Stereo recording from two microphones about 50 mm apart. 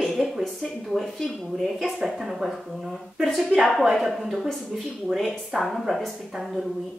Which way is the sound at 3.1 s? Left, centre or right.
Centre.